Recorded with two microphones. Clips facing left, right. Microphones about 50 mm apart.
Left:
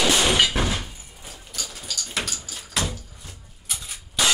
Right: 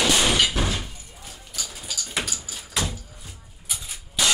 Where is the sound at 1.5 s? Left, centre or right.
Centre.